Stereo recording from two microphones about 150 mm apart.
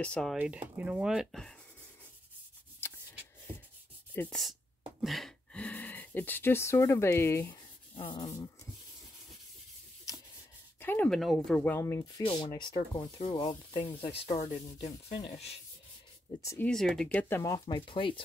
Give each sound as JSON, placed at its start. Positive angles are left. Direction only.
{"t": 0.0, "sound": "speech", "side_deg": 5}
{"t": 0.4, "sound": "speech", "side_deg": -10}
{"t": 2.8, "sound": "a sound", "side_deg": 15}
{"t": 4.1, "sound": "speech", "side_deg": 10}
{"t": 5.0, "sound": "speech", "side_deg": 0}
{"t": 7.9, "sound": "speech", "side_deg": 35}
{"t": 10.8, "sound": "a sound", "side_deg": 15}
{"t": 11.1, "sound": "speech", "side_deg": 0}
{"t": 12.3, "sound": "speech", "side_deg": 30}
{"t": 14.4, "sound": "speech", "side_deg": 25}
{"t": 16.3, "sound": "speech", "side_deg": 20}
{"t": 16.6, "sound": "speech", "side_deg": 5}
{"t": 17.4, "sound": "speech", "side_deg": 25}